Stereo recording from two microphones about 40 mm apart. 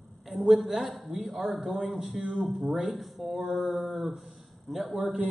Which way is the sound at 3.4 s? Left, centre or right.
Centre.